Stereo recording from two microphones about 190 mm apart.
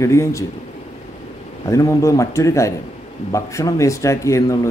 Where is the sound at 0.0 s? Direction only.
15° left (ahead or behind).